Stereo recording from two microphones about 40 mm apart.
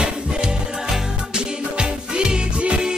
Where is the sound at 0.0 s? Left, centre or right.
Centre.